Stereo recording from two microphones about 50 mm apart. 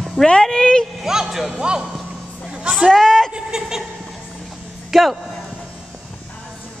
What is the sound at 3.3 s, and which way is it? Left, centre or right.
Speech, centre.